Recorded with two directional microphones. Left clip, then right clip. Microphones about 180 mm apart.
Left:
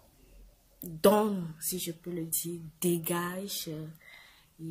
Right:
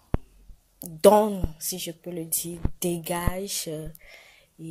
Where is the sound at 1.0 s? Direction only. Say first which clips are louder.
Right 7 dB; 25° right (ahead or behind).